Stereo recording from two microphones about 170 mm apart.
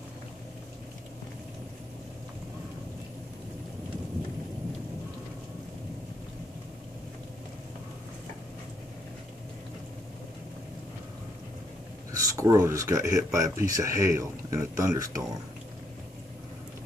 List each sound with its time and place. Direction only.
12.1 s speech: 20° right (ahead or behind)